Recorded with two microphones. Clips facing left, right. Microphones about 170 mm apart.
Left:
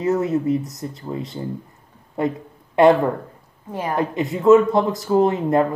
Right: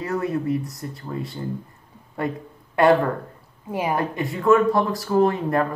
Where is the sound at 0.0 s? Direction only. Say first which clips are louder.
Left 5 dB; 20° left (ahead or behind).